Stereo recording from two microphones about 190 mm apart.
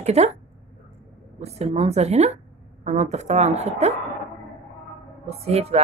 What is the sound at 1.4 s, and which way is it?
A woman's voice, 35° right (ahead or behind).